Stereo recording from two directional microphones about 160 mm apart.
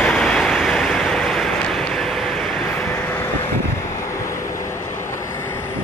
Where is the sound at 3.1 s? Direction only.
15° left (ahead or behind).